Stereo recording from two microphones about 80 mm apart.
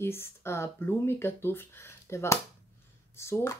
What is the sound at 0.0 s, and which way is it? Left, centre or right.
Speech, left.